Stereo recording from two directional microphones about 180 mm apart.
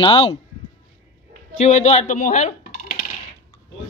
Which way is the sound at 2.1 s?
45° left (ahead or behind).